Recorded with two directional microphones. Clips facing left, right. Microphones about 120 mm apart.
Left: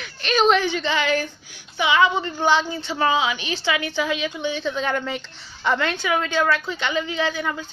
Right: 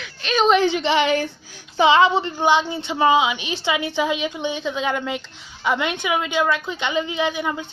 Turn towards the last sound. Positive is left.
turn(degrees=-20)  # may be behind; listen again after turning